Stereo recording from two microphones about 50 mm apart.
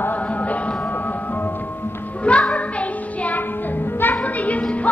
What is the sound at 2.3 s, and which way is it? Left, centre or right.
Music, left.